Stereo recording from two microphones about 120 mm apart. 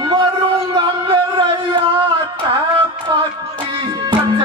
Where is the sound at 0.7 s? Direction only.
40° right (ahead or behind).